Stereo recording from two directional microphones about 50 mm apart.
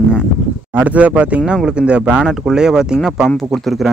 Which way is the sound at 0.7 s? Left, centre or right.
Right.